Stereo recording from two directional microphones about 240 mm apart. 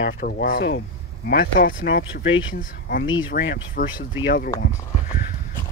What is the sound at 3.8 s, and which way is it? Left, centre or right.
Speech, left.